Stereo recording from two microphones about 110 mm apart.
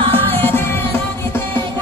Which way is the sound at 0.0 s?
55° right (ahead or behind).